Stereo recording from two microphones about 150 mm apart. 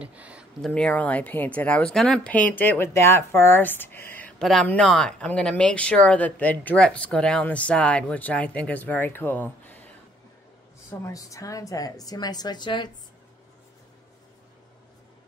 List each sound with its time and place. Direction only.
0.0 s a sound: 10° right (ahead or behind)
0.6 s speech: 5° left (ahead or behind)
10.9 s a woman's voice: 20° left (ahead or behind)